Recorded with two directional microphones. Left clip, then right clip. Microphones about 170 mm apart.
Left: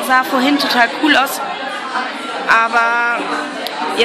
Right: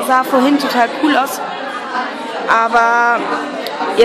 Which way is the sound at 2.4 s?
20° right (ahead or behind).